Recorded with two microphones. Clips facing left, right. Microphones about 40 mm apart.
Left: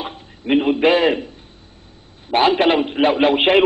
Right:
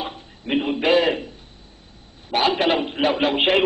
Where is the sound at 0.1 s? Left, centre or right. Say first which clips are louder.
Left 6 dB; centre.